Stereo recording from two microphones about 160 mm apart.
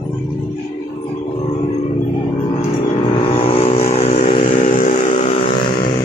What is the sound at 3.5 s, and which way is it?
Vehicle, 35° left (ahead or behind).